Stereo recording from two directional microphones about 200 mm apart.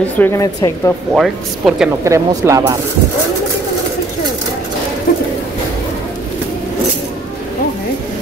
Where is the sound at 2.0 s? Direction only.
15° right (ahead or behind).